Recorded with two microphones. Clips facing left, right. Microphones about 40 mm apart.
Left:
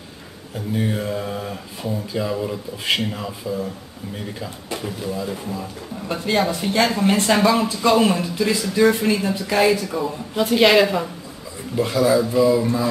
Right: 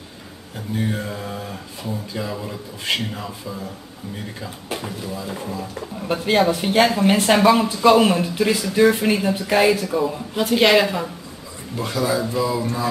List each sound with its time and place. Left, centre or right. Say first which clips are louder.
0.7 s speech: left 2 dB; centre
4.7 s speech: left 4 dB; centre
5.3 s speech: even; centre
6.0 s speech: right 2 dB; centre
6.3 s speech: right 3 dB; centre
6.6 s speech: right 2 dB; right
7.3 s speech: right 2 dB; centre